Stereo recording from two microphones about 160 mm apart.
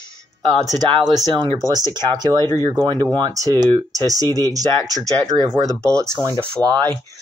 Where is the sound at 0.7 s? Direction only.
30° right (ahead or behind).